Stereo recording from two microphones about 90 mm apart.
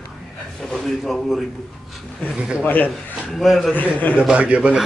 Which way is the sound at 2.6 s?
20° left (ahead or behind).